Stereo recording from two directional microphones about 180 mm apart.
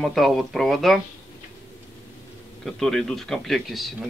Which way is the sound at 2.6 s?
Centre (ahead or behind).